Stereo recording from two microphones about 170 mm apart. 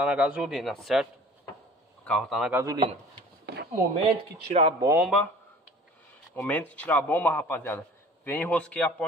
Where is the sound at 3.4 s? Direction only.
70° right (ahead or behind).